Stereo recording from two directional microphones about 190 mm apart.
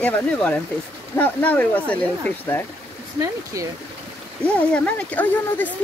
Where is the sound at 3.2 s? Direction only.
15° right (ahead or behind).